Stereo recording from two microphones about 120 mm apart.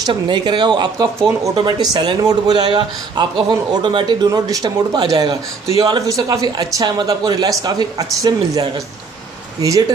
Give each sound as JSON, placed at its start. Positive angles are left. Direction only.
{"t": 0.0, "sound": "speech", "side_deg": -40}